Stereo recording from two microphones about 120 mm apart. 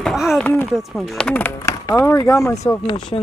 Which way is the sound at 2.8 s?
45° left (ahead or behind).